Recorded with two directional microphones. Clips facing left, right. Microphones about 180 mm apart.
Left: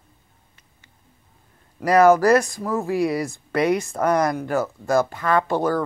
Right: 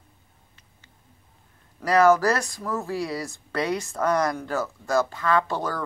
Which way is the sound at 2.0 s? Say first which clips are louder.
Left 3 dB; 50° left (ahead or behind).